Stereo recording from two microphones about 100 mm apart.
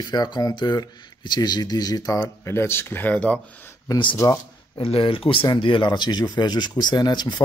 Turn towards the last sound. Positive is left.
turn(degrees=45)  # may be behind; listen again after turning